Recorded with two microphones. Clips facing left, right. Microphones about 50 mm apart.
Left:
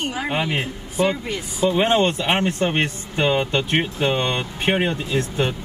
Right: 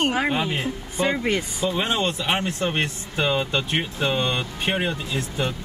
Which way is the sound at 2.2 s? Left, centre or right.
Left.